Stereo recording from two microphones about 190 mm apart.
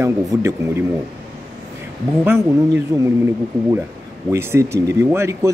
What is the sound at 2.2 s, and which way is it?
Speech, 15° right (ahead or behind).